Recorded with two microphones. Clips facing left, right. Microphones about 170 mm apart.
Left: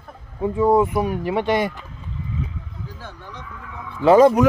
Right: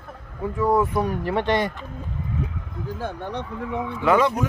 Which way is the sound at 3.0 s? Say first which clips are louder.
Right 9 dB; 60° right (ahead or behind).